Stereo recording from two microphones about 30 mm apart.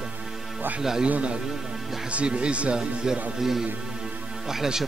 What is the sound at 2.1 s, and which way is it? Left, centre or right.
Speech, right.